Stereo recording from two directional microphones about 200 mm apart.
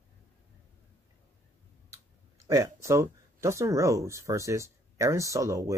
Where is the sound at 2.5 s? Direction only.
15° right (ahead or behind).